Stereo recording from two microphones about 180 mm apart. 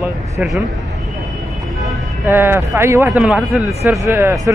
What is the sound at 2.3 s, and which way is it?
A man's voice, 10° right (ahead or behind).